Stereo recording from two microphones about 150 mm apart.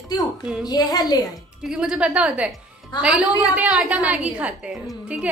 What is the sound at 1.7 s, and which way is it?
A woman's voice, 5° right (ahead or behind).